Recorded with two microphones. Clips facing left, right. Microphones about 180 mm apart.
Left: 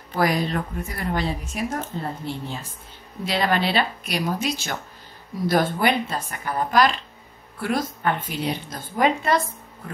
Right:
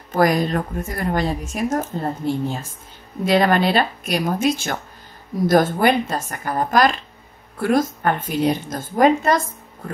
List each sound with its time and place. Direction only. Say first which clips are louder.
0.1 s a woman's voice: right 5 dB; 45° right (ahead or behind)